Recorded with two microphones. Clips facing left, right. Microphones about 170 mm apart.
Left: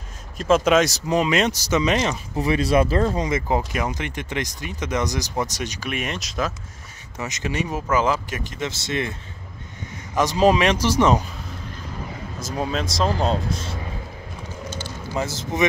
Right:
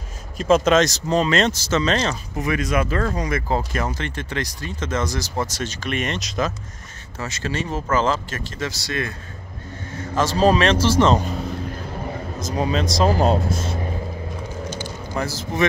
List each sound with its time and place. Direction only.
0.4 s speech: 5° left (ahead or behind)
2.3 s speech: 30° left (ahead or behind); by 6.5 s 5° left (ahead or behind)
7.2 s speech: 15° left (ahead or behind)
12.4 s speech: 5° left (ahead or behind)
15.1 s a man's voice: 20° left (ahead or behind)